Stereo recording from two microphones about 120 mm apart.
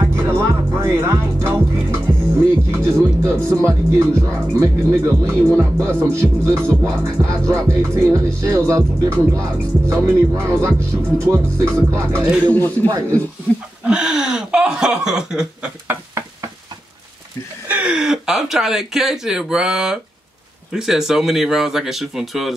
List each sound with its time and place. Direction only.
0.0 s music: 20° right (ahead or behind)
2.4 s speech: 20° right (ahead or behind)
12.4 s speech: 15° left (ahead or behind)
13.8 s chuckle: 5° right (ahead or behind)
15.9 s knock: 25° right (ahead or behind)
17.6 s speech: 10° right (ahead or behind)